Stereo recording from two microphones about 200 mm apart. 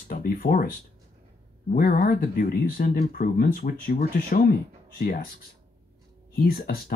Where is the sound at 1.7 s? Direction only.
45° left (ahead or behind).